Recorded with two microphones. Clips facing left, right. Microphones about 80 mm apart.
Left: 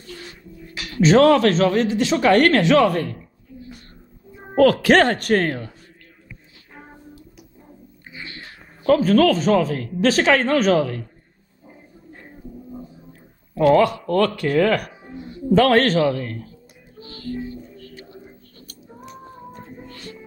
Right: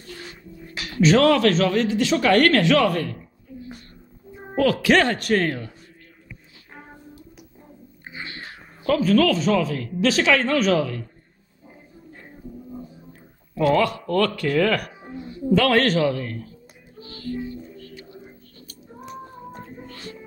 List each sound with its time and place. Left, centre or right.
1.0 s a man's voice: left
4.6 s speech: left
8.0 s a sound: right
8.8 s speech: left
13.6 s a man's voice: left
15.5 s speech: left
17.0 s music: left